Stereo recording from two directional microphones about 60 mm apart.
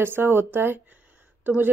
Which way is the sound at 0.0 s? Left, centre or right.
Right.